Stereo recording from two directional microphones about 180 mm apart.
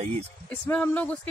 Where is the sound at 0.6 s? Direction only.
10° left (ahead or behind).